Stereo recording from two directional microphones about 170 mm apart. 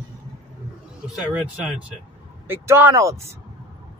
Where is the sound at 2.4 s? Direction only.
15° right (ahead or behind).